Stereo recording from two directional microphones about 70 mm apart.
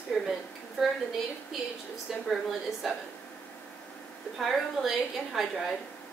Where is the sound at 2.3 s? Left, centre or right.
Centre.